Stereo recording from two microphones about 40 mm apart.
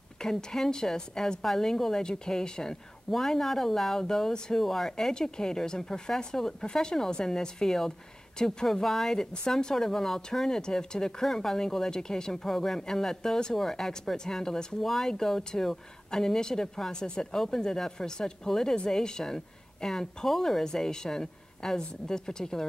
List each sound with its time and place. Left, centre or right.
0.2 s speech: centre
8.7 s speech: centre